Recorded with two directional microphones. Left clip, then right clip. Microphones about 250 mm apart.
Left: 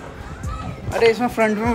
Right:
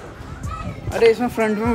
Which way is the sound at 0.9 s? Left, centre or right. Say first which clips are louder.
Right 1 dB; centre.